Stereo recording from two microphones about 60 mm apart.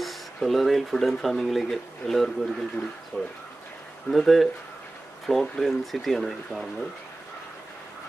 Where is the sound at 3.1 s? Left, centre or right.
Left.